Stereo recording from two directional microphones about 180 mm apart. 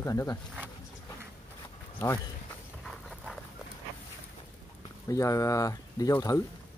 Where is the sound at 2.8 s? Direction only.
Centre (ahead or behind).